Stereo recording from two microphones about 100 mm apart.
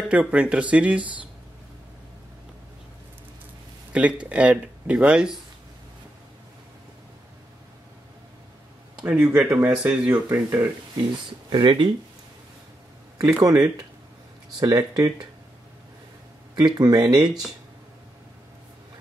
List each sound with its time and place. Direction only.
0.1 s speech: 10° right (ahead or behind)
3.9 s speech: 15° right (ahead or behind)
8.9 s speech: 10° right (ahead or behind)
10.3 s speech: 20° right (ahead or behind)
11.5 s speech: 50° right (ahead or behind)
13.2 s speech: 40° right (ahead or behind)
16.5 s speech: 45° right (ahead or behind)